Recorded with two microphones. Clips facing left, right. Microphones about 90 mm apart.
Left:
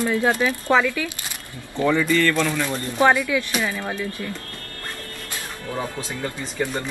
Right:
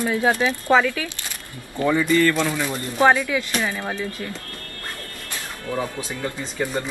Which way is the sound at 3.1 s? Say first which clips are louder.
Even; 20° right (ahead or behind).